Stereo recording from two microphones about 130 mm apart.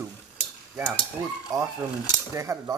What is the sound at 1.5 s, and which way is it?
Speech, 30° right (ahead or behind).